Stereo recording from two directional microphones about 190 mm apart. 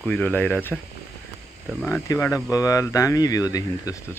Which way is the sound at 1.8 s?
15° left (ahead or behind).